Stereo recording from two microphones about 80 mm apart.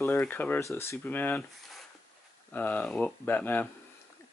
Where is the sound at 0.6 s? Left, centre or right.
Left.